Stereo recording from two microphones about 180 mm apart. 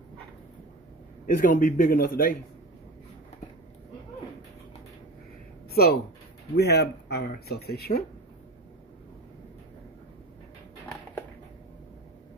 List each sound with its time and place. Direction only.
1.2 s a man's voice: 50° left (ahead or behind)
5.7 s speech: 60° left (ahead or behind)